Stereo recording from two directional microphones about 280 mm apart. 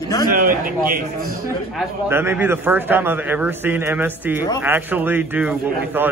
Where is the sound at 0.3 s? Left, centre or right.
Right.